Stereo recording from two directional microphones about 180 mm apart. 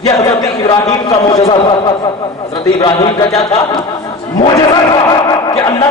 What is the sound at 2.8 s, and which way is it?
Speech, 30° left (ahead or behind).